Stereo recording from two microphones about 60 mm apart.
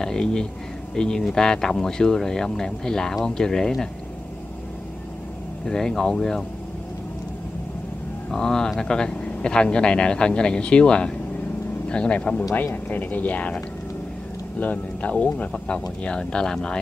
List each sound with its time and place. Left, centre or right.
0.0 s speech: centre
5.7 s speech: centre
8.3 s speech: centre
14.6 s speech: left